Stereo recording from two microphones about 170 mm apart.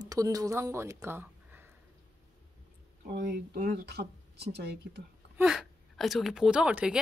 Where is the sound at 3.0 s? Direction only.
85° right.